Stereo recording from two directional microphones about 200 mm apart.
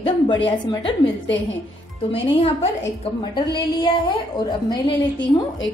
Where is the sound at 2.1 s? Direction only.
30° left (ahead or behind).